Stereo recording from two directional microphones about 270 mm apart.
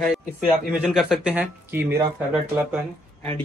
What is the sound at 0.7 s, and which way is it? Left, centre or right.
Speech, centre.